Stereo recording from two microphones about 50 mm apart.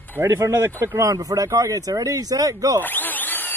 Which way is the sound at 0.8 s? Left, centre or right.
Right.